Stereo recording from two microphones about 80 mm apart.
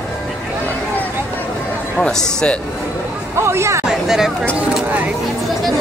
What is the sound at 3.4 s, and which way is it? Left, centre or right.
Speech, right.